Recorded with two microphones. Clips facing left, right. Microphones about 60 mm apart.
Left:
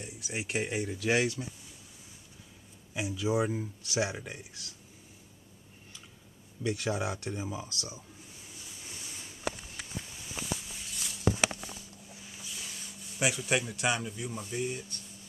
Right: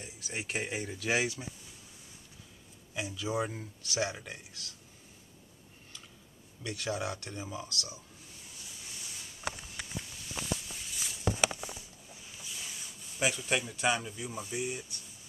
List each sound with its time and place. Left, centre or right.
0.0 s speech: centre
2.9 s speech: centre
6.6 s speech: left
10.3 s a sound: centre
11.2 s a sound: centre
12.1 s speech: centre